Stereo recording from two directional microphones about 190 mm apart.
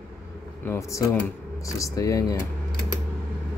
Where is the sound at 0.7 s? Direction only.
15° left (ahead or behind).